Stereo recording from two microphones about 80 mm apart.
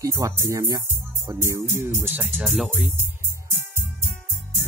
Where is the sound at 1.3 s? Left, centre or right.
Right.